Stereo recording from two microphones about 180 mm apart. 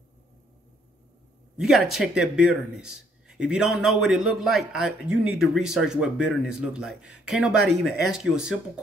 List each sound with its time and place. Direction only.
1.6 s a man's voice: centre (ahead or behind)